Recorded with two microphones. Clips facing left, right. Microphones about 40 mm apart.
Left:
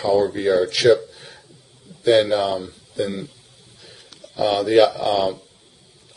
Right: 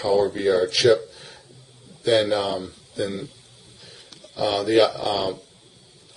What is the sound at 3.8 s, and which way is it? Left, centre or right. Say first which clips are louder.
Speech: left 2 dB; centre.